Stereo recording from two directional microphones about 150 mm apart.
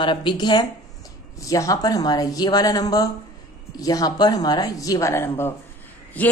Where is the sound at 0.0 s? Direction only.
35° left (ahead or behind).